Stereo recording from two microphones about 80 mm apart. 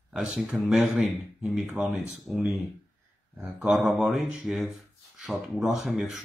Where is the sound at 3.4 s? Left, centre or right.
Centre.